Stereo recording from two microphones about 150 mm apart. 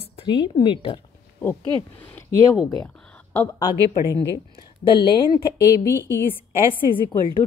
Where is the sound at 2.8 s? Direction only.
10° left (ahead or behind).